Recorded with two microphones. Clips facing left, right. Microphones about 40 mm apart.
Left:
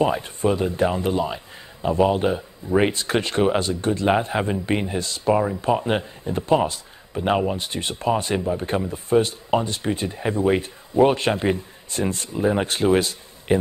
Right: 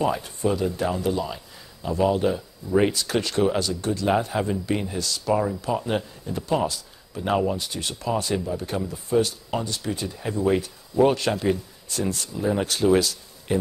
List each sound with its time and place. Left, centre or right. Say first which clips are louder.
0.0 s speech: left 3 dB; left